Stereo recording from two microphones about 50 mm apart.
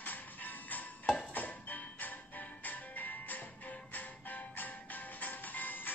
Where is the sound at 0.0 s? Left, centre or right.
Left.